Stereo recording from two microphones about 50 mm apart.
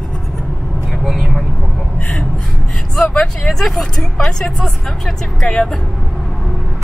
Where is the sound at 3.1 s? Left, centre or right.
Centre.